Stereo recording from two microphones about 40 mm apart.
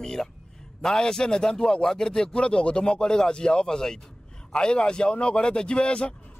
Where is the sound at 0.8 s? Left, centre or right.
Centre.